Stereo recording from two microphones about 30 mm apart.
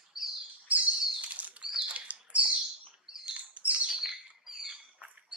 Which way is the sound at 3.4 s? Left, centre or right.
Right.